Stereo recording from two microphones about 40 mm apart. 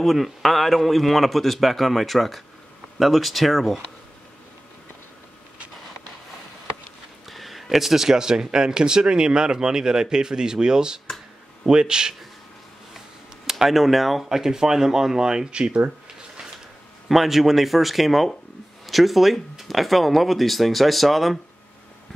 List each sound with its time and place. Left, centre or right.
0.0 s speech: centre
7.2 s speech: centre
13.5 s speech: centre
17.1 s speech: centre